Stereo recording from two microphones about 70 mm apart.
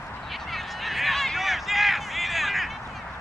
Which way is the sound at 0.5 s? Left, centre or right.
Centre.